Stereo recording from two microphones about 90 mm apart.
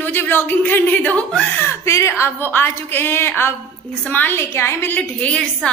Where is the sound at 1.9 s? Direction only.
30° left (ahead or behind).